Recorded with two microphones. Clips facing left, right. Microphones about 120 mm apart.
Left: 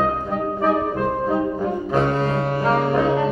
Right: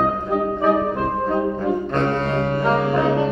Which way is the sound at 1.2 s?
5° left (ahead or behind).